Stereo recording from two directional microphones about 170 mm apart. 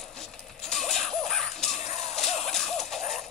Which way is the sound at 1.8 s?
40° left (ahead or behind).